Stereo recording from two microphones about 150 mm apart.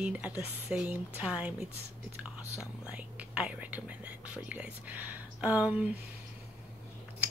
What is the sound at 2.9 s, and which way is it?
A woman's voice, 10° right (ahead or behind).